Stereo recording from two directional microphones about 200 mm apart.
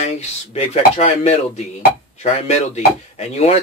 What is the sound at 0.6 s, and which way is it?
Speech, 30° left (ahead or behind).